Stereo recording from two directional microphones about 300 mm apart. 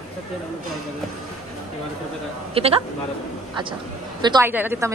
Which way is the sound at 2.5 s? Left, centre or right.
Centre.